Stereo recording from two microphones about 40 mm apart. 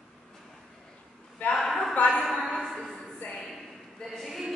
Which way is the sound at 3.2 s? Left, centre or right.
Left.